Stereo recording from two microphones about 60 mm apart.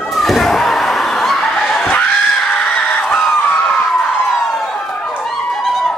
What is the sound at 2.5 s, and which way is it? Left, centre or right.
Screaming, centre.